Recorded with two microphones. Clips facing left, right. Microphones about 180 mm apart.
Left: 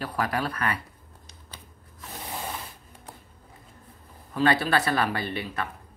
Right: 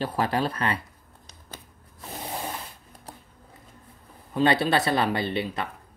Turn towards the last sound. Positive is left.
turn(degrees=-20)  # may be behind; listen again after turning